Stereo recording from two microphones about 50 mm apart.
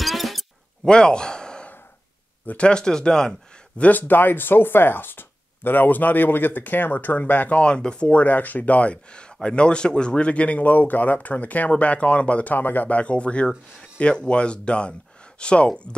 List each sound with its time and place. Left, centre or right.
0.0 s a sound: centre
0.8 s a man's voice: centre
3.9 s speech: left
7.6 s speech: centre
8.1 s speech: left
12.5 s speech: left